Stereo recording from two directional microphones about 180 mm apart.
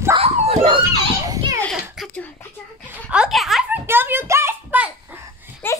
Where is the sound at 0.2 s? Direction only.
35° right (ahead or behind).